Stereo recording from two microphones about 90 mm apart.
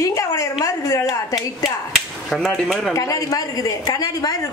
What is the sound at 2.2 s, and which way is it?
Speech, centre (ahead or behind).